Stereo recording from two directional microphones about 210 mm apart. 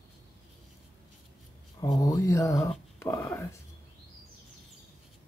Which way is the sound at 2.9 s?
10° left (ahead or behind).